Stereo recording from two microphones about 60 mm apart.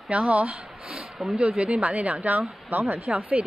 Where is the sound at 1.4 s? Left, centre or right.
Centre.